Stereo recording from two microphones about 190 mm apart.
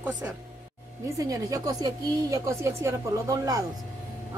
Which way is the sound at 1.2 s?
15° right (ahead or behind).